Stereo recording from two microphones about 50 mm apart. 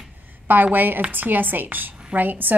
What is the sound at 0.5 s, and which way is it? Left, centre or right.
A woman's voice, right.